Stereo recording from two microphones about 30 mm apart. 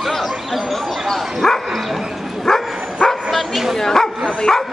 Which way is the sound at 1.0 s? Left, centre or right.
Centre.